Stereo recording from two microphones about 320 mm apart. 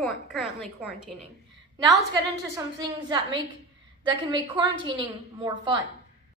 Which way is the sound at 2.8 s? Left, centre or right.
Centre.